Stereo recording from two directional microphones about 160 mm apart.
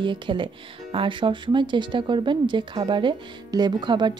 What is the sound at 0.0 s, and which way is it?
Speech, 30° right (ahead or behind).